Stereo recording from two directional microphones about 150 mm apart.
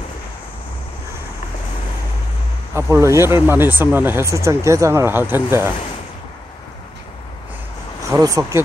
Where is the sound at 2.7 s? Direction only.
20° right (ahead or behind).